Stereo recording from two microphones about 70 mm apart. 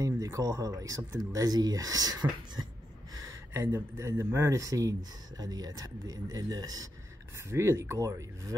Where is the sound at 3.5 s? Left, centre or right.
Right.